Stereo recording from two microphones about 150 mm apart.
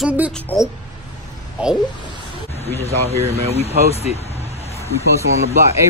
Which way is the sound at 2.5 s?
45° left (ahead or behind).